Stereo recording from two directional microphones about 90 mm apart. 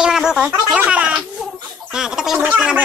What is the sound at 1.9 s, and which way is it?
Gargling, 5° right (ahead or behind).